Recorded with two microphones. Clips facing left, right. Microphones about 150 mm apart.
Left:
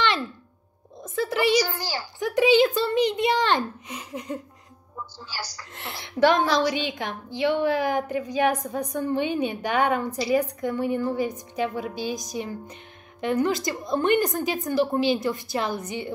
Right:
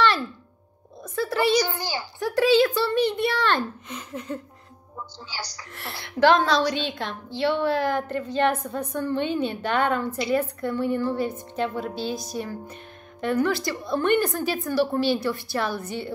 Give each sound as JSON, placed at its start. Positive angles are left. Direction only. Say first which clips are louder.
{"t": 1.0, "sound": "a child's voice", "louder": "even", "side_deg": 20}
{"t": 1.7, "sound": "a woman's voice", "louder": "right 1 dB", "side_deg": -20}
{"t": 2.1, "sound": "a child's voice", "louder": "even", "side_deg": 20}
{"t": 5.8, "sound": "a child's voice", "louder": "left 1 dB", "side_deg": 20}